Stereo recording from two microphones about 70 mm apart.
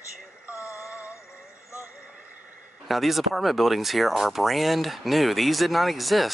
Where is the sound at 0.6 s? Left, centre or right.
Left.